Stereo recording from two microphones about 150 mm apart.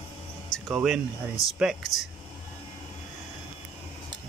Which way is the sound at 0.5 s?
Centre (ahead or behind).